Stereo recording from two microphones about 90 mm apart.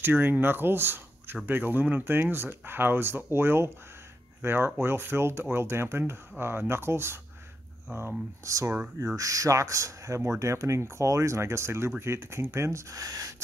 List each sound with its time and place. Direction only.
0.0 s speech: 25° right (ahead or behind)
8.5 s speech: 35° right (ahead or behind)